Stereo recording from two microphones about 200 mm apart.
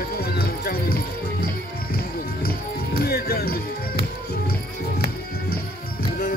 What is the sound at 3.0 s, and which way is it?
Music, 50° left (ahead or behind).